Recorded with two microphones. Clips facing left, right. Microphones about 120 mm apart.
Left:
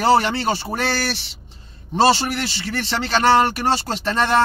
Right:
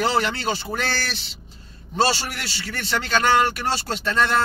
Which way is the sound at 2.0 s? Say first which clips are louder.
Left 6 dB; 30° left (ahead or behind).